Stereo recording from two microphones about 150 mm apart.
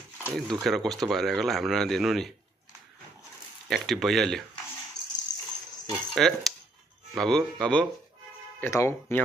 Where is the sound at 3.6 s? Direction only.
Centre (ahead or behind).